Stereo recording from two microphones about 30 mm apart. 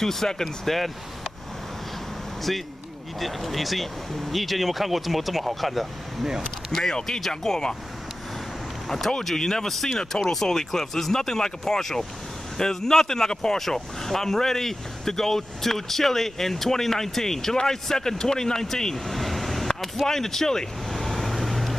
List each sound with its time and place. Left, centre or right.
0.0 s speech: centre
0.7 s speech: centre
3.2 s speech: centre
6.7 s speech: centre
8.8 s speech: centre
9.7 s speech: centre
13.6 s speech: centre
19.0 s vehicle: centre
20.1 s speech: centre
20.9 s vehicle: centre